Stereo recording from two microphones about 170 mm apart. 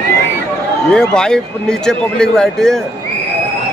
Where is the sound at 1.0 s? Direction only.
5° left (ahead or behind).